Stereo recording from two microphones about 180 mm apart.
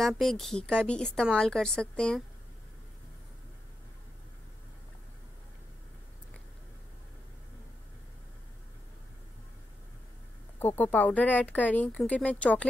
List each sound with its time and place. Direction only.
0.0 s a woman's voice: centre (ahead or behind)
10.6 s speech: 10° left (ahead or behind)